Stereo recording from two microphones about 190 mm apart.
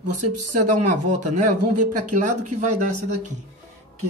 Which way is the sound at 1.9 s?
40° right (ahead or behind).